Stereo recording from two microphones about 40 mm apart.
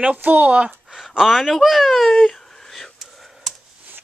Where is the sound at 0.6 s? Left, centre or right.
Centre.